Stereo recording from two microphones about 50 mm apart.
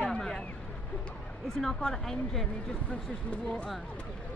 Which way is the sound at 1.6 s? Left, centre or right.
Centre.